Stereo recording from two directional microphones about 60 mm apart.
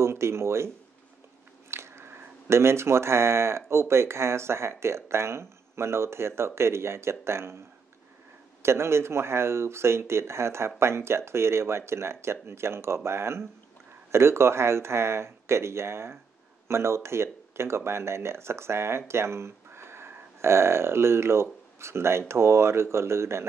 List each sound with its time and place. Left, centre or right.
0.0 s speech: right
1.7 s speech: right
8.6 s speech: right